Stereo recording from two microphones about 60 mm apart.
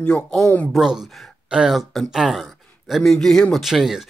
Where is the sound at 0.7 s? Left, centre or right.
Centre.